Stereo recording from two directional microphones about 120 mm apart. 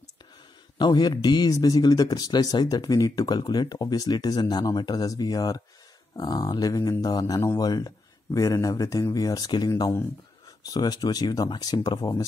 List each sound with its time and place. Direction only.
0.7 s speech: 35° left (ahead or behind)